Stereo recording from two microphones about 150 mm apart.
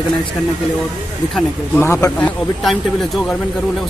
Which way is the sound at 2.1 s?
5° left (ahead or behind).